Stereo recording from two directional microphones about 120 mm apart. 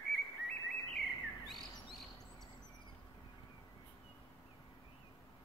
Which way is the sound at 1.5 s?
Centre (ahead or behind).